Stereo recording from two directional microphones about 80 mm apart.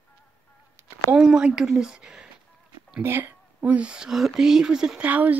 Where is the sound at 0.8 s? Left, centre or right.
Right.